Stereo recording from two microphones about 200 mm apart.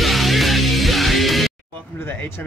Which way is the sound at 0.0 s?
Centre (ahead or behind).